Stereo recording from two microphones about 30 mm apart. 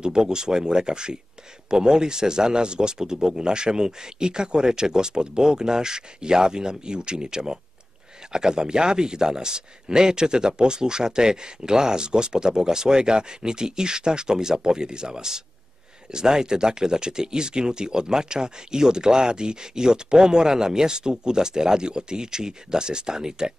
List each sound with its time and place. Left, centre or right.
0.0 s speech: right